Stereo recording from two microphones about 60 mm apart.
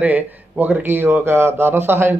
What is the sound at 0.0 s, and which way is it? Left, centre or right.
Speech, right.